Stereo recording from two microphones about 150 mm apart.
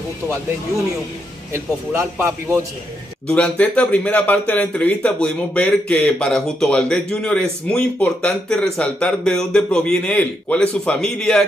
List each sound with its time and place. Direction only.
1.5 s a man's voice: 15° right (ahead or behind)
3.3 s speech: 10° left (ahead or behind)